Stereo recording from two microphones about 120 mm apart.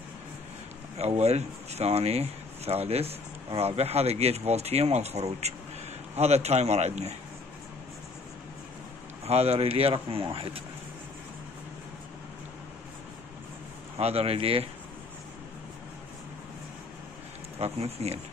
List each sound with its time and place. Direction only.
0.9 s speech: 60° right (ahead or behind)
9.2 s speech: 60° right (ahead or behind)
13.9 s speech: 60° right (ahead or behind)
17.6 s speech: 60° right (ahead or behind)